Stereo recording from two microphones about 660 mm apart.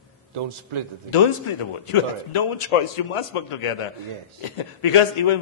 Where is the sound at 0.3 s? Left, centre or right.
Right.